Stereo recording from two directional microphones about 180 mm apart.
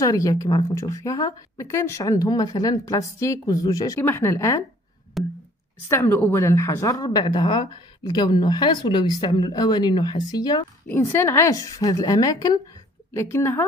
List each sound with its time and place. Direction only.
0.0 s a woman's voice: 20° left (ahead or behind)
5.2 s music: centre (ahead or behind)
5.9 s a woman's voice: 10° left (ahead or behind)